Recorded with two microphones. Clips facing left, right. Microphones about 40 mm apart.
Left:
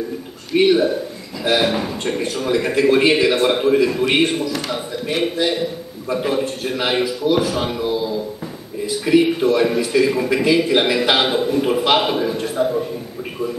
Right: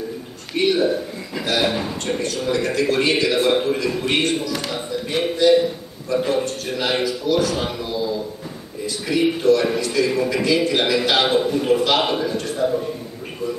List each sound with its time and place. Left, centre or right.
0.5 s a man's voice: left
1.6 s a man's voice: centre
4.5 s speech: centre
6.0 s a man's voice: centre
11.6 s a man's voice: centre
12.0 s a man's voice: centre